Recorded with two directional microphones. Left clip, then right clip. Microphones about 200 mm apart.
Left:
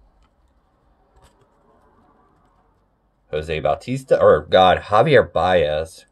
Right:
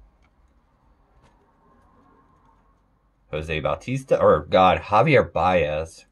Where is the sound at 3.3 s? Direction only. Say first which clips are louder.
Left 5 dB; 20° left (ahead or behind).